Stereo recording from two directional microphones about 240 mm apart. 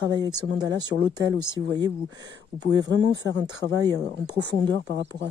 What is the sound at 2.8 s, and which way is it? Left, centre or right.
Speech, right.